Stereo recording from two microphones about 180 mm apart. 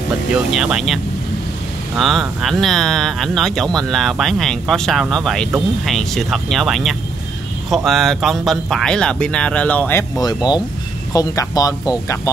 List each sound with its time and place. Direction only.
0.3 s speech: 5° right (ahead or behind); by 11.9 s 20° left (ahead or behind)